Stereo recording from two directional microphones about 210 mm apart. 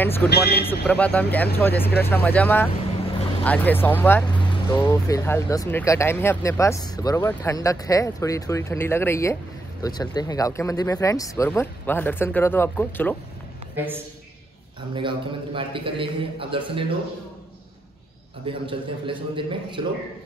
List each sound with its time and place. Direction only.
0.0 s speech: 10° left (ahead or behind)
0.3 s speech: 50° left (ahead or behind)
0.8 s speech: 5° left (ahead or behind)
4.3 s speech: 20° left (ahead or behind)
13.7 s a man's voice: 10° right (ahead or behind)
15.0 s a man's voice: 25° right (ahead or behind)
18.5 s a man's voice: 25° right (ahead or behind)